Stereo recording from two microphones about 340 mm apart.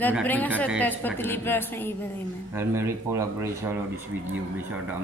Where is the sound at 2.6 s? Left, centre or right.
Centre.